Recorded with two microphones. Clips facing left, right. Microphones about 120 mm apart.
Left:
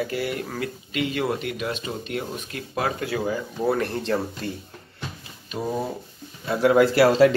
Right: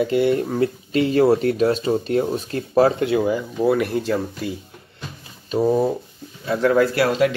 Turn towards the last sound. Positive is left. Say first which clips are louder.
# left 2 dB
turn(degrees=30)  # may be behind; listen again after turning